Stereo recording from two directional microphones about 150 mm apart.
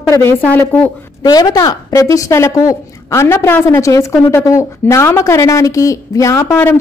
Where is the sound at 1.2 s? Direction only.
25° left (ahead or behind).